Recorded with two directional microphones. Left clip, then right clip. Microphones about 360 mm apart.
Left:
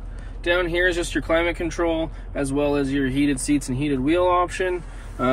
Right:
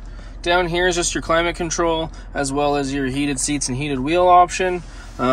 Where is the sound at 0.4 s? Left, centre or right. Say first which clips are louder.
Right 3 dB; centre.